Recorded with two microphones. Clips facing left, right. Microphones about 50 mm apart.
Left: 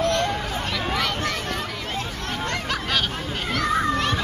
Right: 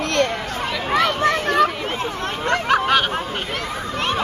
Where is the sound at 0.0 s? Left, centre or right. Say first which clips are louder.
Right 2 dB; right.